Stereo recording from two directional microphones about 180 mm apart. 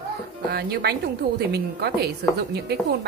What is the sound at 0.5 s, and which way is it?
Speech, 65° right (ahead or behind).